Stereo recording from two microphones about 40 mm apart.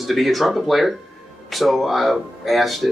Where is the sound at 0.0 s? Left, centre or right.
Centre.